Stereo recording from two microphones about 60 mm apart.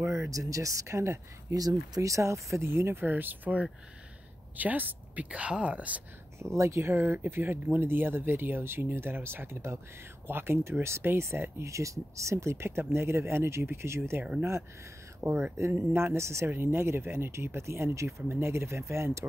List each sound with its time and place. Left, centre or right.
0.0 s speech: right
1.5 s speech: right
6.4 s speech: right
15.5 s speech: right